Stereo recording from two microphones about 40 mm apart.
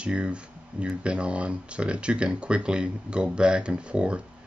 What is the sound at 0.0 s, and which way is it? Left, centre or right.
Speech, right.